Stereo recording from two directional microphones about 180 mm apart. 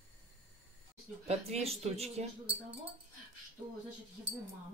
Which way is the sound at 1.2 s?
35° right (ahead or behind).